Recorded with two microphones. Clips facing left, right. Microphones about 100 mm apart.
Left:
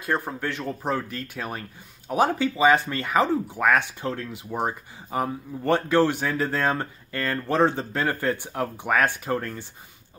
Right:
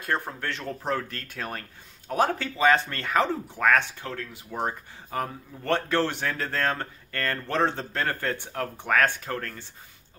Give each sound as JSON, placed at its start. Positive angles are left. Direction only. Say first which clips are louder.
{"t": 0.0, "sound": "speech", "louder": "left 3 dB", "side_deg": 5}
{"t": 4.0, "sound": "speech", "louder": "left 6 dB", "side_deg": 20}